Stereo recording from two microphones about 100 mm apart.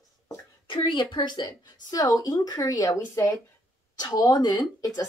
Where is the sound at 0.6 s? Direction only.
55° left (ahead or behind).